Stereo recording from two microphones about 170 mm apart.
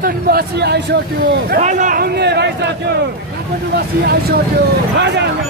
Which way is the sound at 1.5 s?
45° right (ahead or behind).